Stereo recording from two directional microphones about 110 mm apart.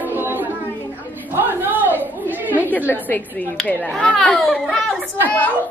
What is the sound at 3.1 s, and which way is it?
A woman's voice, 15° left (ahead or behind).